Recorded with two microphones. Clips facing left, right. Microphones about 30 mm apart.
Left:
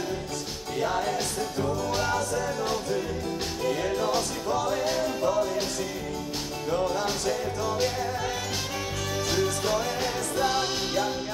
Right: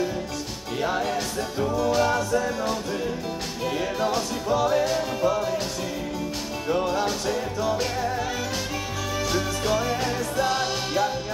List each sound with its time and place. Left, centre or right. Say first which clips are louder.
0.7 s music: right 2 dB; centre
3.6 s music: right 1 dB; centre
6.7 s music: right 3 dB; right
9.7 s music: right 3 dB; centre
10.4 s music: right 1 dB; centre